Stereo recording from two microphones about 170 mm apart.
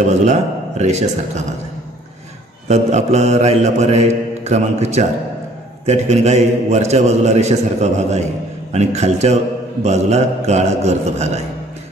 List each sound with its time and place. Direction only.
0.0 s a man's voice: 45° right (ahead or behind)
2.7 s a man's voice: 40° right (ahead or behind)